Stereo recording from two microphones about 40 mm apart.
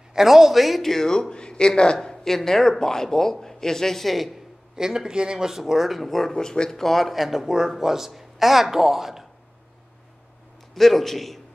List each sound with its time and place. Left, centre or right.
0.1 s speech: centre
0.8 s speech: centre
2.2 s speech: centre
4.7 s speech: centre
6.0 s speech: centre
10.7 s a man's voice: centre